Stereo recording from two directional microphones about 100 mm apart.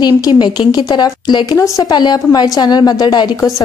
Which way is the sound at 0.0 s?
45° left (ahead or behind).